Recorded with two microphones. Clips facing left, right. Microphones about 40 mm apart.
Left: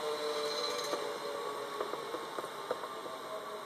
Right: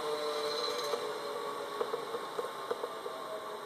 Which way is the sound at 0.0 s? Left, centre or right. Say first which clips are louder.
Right 1 dB; centre.